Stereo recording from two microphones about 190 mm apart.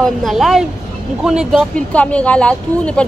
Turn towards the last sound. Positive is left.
turn(degrees=5)  # may be behind; listen again after turning